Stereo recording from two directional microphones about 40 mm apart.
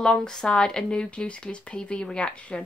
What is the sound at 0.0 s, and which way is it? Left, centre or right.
Speech, centre.